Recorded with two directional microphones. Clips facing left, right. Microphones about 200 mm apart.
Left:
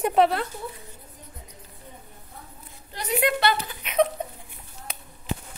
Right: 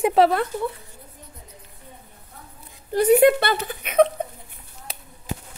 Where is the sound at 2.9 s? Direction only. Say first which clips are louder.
Right 11 dB; 55° right (ahead or behind).